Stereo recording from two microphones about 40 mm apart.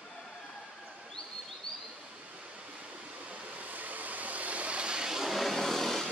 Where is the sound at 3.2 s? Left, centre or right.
Right.